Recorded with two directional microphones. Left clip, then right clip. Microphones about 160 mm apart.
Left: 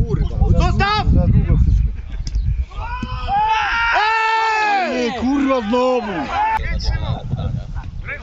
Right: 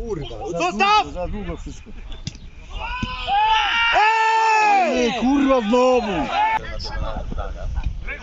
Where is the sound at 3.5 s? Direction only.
25° right (ahead or behind).